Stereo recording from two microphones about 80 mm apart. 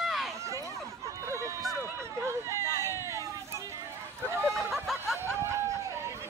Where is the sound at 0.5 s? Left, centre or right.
Right.